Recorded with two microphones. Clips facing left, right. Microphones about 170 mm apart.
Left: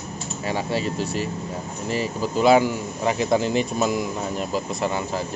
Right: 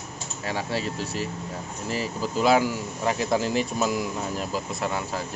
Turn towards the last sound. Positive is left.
turn(degrees=0)  # may be behind; listen again after turning